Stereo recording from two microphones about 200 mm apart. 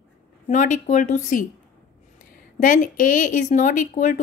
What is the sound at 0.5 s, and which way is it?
A woman's voice, 40° left (ahead or behind).